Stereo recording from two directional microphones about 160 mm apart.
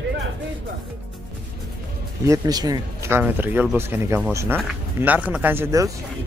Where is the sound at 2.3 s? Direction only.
25° right (ahead or behind).